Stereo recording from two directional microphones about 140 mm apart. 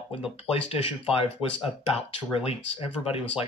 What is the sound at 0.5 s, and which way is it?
Speech, 40° left (ahead or behind).